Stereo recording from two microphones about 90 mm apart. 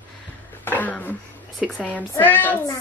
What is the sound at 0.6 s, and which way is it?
A woman's voice, 20° left (ahead or behind).